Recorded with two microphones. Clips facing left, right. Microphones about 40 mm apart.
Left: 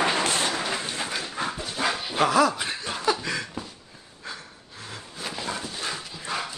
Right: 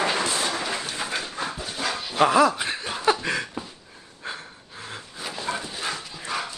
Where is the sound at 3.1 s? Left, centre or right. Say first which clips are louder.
Right 4 dB; right.